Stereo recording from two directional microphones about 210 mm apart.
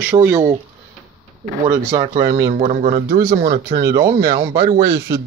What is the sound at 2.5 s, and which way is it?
Speech, 30° right (ahead or behind).